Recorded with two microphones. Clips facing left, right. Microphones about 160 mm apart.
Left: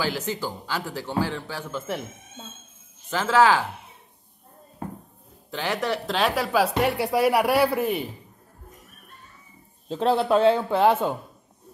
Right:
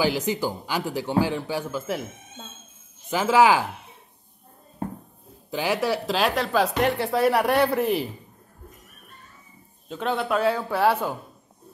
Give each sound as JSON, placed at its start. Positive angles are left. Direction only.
{"t": 0.0, "sound": "a man's voice", "side_deg": -15}
{"t": 3.1, "sound": "a man's voice", "side_deg": -10}
{"t": 5.5, "sound": "speech", "side_deg": -10}
{"t": 9.8, "sound": "speech", "side_deg": 30}